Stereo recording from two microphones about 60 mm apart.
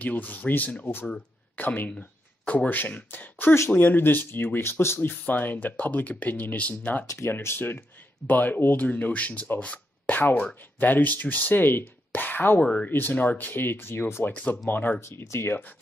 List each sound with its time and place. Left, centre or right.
0.0 s speech: left
7.2 s speech: left
12.5 s speech: centre
12.9 s speech: left
14.2 s speech: left
15.0 s speech: left